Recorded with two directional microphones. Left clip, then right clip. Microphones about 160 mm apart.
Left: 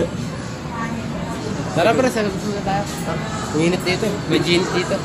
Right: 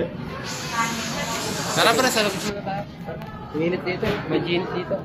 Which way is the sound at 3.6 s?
90° left.